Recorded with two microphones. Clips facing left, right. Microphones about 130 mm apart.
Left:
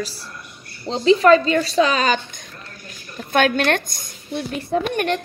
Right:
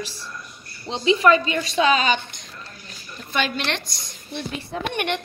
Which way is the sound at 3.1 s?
55° left (ahead or behind).